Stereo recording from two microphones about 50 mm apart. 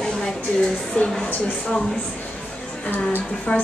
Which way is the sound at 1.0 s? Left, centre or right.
Centre.